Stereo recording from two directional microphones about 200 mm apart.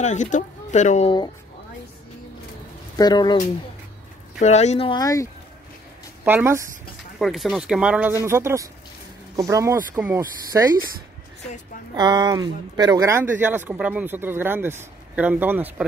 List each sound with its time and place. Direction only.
0.0 s speech: 35° left (ahead or behind)
3.0 s speech: 20° left (ahead or behind)
4.4 s speech: 35° left (ahead or behind); by 5.3 s 15° left (ahead or behind)
6.2 s speech: 10° right (ahead or behind)
7.2 s speech: centre (ahead or behind)
11.9 s speech: 20° right (ahead or behind)